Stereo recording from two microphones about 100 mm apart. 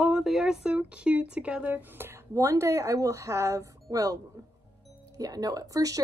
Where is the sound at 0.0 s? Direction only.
5° right (ahead or behind).